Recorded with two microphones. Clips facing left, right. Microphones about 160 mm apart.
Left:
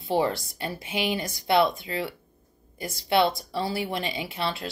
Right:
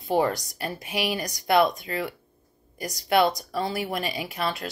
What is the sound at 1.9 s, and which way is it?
Speech, 45° right (ahead or behind).